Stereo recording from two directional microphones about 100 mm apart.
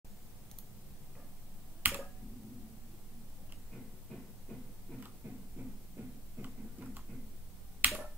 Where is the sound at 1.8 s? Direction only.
15° right (ahead or behind).